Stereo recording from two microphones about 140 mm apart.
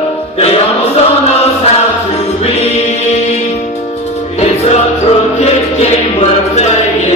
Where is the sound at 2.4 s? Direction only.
50° left (ahead or behind).